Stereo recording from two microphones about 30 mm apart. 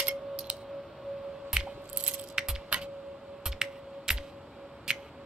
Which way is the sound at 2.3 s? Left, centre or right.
Right.